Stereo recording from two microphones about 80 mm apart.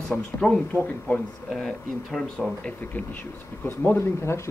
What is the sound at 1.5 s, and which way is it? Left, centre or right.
Speech, centre.